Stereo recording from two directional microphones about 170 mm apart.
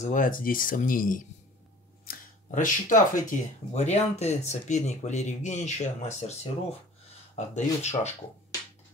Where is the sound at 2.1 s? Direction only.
50° left (ahead or behind).